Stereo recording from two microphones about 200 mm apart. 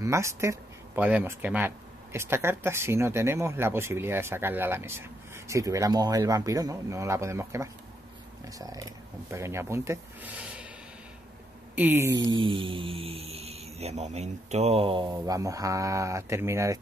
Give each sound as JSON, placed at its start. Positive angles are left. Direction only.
{"t": 0.0, "sound": "speech", "side_deg": -15}
{"t": 11.7, "sound": "speech", "side_deg": -10}